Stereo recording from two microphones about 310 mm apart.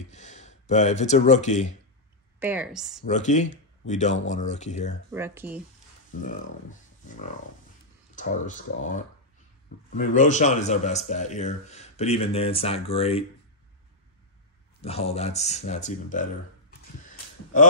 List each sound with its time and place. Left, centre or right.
0.1 s speech: left
2.4 s speech: centre
3.1 s a man's voice: left
5.1 s speech: centre
6.2 s speech: left
9.8 s a man's voice: left
14.8 s a man's voice: centre